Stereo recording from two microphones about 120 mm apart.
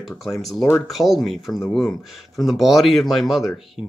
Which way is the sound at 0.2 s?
Centre (ahead or behind).